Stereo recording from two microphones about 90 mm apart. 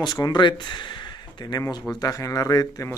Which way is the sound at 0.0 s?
55° left (ahead or behind).